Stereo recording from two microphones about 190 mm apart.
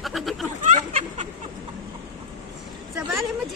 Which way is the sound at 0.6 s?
40° right (ahead or behind).